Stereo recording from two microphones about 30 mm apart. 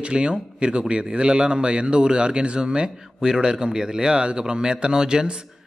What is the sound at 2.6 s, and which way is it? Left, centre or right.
Speech, right.